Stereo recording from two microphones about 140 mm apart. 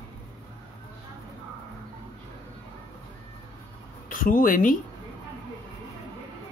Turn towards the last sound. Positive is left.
turn(degrees=75)  # may be behind; listen again after turning